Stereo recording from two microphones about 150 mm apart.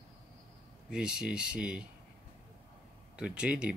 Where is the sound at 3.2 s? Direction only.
5° right (ahead or behind).